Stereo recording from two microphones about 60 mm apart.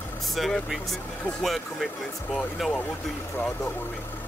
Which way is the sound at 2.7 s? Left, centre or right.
Left.